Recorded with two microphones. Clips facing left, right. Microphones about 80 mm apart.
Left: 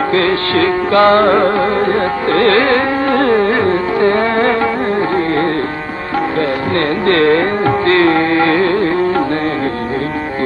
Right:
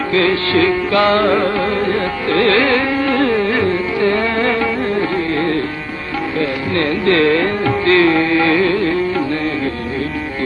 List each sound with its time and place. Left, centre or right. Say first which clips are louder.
0.1 s music: right 3 dB; left
7.1 s music: left 2 dB; left